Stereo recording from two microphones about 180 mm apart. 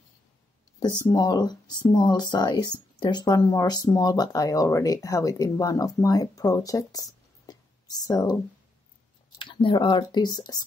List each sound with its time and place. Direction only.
0.8 s speech: 20° left (ahead or behind)
7.4 s a sound: 20° left (ahead or behind)
9.4 s speech: 30° left (ahead or behind)